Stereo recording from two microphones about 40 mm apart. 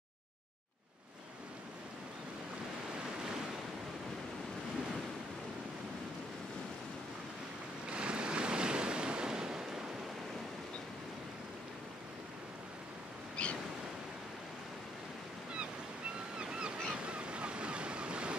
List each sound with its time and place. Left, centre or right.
7.9 s waves: right
13.4 s waves: left
16.3 s waves: right